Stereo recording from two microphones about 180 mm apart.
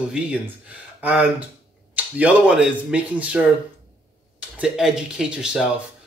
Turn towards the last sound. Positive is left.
turn(degrees=-5)  # may be behind; listen again after turning